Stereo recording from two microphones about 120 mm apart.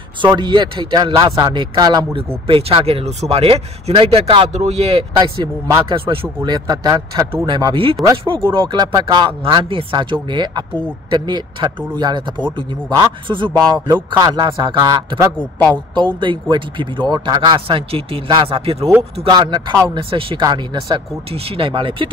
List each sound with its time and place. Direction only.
0.4 s speech: 40° right (ahead or behind)
2.4 s speech: 50° right (ahead or behind)
5.2 s speech: 35° right (ahead or behind)
19.2 s speech: 40° right (ahead or behind)
20.4 s speech: 40° right (ahead or behind)
21.3 s speech: 50° right (ahead or behind)